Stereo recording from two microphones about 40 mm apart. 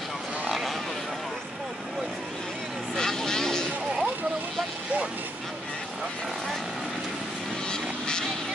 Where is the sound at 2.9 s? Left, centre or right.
Centre.